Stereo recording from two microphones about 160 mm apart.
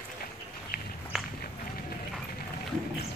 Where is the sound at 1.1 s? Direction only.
Centre (ahead or behind).